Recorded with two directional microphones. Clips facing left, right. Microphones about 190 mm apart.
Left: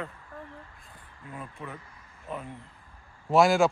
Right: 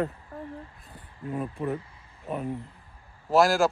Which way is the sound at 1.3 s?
35° right (ahead or behind).